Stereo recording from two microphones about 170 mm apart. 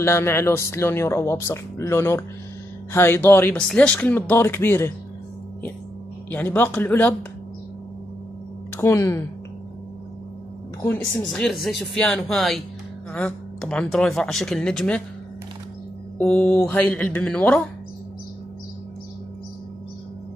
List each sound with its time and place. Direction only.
0.0 s speech: 15° left (ahead or behind)
6.3 s speech: 10° left (ahead or behind)
8.8 s speech: 15° left (ahead or behind)
10.9 s speech: 5° left (ahead or behind)
16.2 s speech: 5° left (ahead or behind)